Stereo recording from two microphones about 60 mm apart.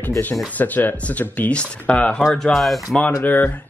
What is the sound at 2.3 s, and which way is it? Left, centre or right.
Speech, centre.